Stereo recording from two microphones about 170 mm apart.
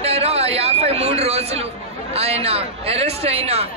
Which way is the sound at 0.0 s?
35° right (ahead or behind).